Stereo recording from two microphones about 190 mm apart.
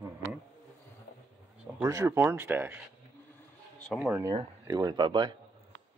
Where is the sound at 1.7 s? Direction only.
15° right (ahead or behind).